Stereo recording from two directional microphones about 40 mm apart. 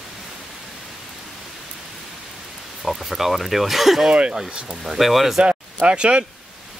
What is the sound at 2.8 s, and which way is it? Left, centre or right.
Speech, centre.